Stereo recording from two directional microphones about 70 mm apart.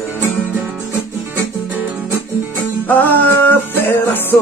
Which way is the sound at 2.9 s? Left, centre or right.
Left.